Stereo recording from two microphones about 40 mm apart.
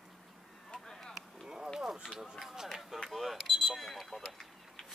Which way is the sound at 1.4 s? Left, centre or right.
Centre.